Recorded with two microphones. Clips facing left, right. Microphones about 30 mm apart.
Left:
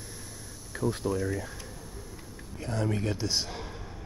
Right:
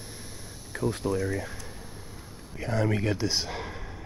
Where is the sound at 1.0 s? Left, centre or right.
Right.